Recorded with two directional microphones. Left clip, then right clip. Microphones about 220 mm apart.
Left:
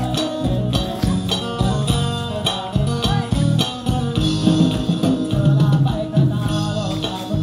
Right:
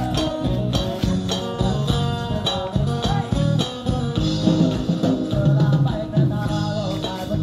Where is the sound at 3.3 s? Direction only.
35° left (ahead or behind).